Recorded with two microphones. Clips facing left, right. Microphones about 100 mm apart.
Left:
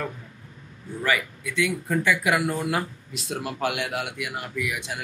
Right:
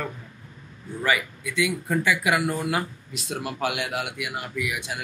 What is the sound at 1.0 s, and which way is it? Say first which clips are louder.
A man's voice: right 1 dB; 15° right (ahead or behind).